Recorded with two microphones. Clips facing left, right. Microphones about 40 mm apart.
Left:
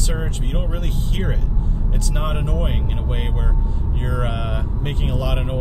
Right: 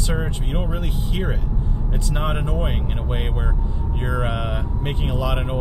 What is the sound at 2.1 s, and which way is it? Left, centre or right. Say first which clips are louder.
Speech: right 1 dB; centre.